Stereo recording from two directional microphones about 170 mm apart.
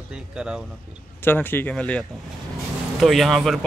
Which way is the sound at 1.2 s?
10° left (ahead or behind).